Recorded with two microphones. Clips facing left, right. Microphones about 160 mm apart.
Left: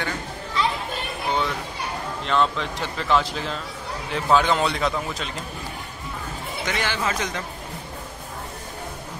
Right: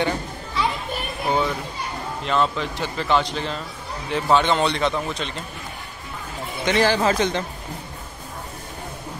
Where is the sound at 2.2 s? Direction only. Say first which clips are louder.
Right 1 dB; centre (ahead or behind).